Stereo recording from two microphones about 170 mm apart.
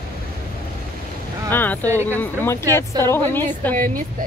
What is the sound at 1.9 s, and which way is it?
Speech, 15° right (ahead or behind).